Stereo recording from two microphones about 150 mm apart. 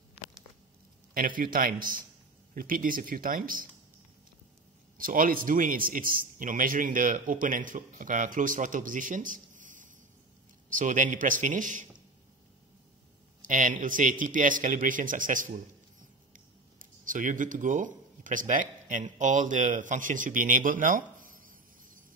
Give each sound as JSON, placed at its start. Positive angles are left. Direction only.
{"t": 1.1, "sound": "speech", "side_deg": -65}
{"t": 4.9, "sound": "a man's voice", "side_deg": -70}
{"t": 13.4, "sound": "a man's voice", "side_deg": -60}